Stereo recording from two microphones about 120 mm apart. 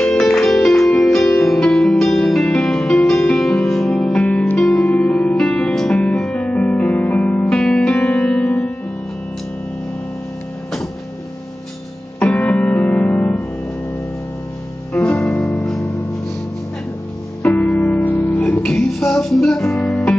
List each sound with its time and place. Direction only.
0.0 s music: 5° left (ahead or behind)
12.2 s music: 5° left (ahead or behind)
15.2 s music: centre (ahead or behind)
15.8 s music: 25° left (ahead or behind)
17.4 s music: 10° left (ahead or behind)
18.5 s music: 5° left (ahead or behind)